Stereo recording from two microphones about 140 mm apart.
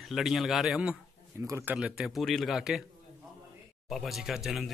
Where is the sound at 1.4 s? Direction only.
15° right (ahead or behind).